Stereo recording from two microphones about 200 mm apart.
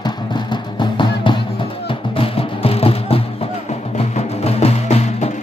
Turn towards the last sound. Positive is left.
turn(degrees=35)  # may be behind; listen again after turning